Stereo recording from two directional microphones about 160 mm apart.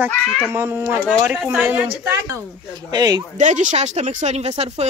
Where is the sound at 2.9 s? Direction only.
25° right (ahead or behind).